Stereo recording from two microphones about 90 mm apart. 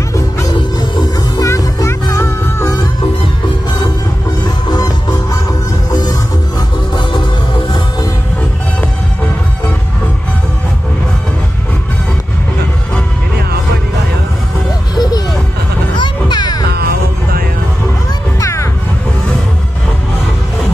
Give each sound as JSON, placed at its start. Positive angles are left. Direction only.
{"t": 0.1, "sound": "music", "side_deg": 35}
{"t": 4.6, "sound": "music", "side_deg": 40}
{"t": 15.0, "sound": "a sound", "side_deg": 50}
{"t": 16.0, "sound": "music", "side_deg": 55}
{"t": 18.4, "sound": "music", "side_deg": 35}